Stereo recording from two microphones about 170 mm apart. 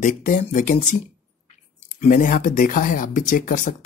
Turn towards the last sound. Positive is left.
turn(degrees=50)  # may be behind; listen again after turning